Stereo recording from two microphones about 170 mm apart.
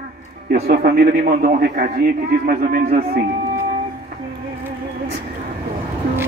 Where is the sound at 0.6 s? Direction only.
65° right (ahead or behind).